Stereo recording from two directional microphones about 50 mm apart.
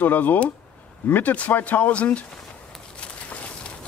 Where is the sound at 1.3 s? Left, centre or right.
Left.